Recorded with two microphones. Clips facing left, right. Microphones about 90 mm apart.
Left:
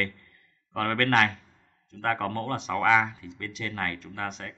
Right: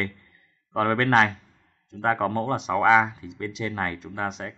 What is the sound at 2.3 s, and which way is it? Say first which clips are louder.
Speech: right 5 dB; 20° right (ahead or behind).